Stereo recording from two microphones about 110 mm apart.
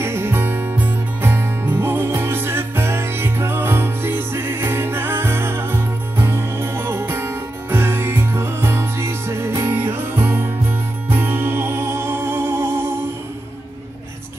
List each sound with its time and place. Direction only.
0.0 s music: 20° right (ahead or behind)